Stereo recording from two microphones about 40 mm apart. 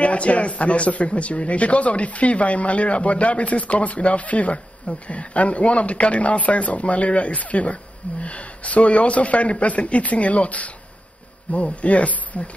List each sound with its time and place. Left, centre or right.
0.0 s speech: left